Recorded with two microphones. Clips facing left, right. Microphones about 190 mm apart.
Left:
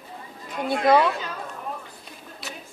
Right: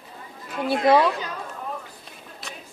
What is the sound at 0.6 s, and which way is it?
Speech, 5° right (ahead or behind).